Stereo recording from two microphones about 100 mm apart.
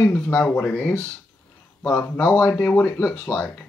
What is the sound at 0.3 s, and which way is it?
Speech, 25° left (ahead or behind).